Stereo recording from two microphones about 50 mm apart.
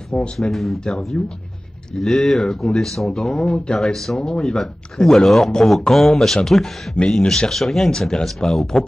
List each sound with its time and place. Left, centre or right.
0.4 s speech: centre
1.2 s speech: centre
2.0 s speech: centre
3.5 s speech: centre
3.8 s speech: centre